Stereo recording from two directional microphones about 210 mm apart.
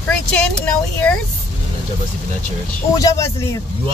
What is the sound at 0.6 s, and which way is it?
Speech, 5° left (ahead or behind).